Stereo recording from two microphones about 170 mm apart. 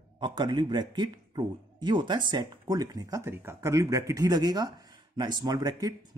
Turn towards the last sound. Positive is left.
turn(degrees=-20)  # may be behind; listen again after turning